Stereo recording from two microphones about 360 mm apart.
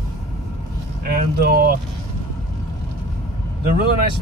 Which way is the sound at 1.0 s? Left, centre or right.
Right.